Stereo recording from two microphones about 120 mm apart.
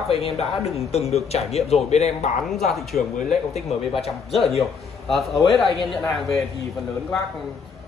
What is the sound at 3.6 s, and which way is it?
Speech, 60° left (ahead or behind).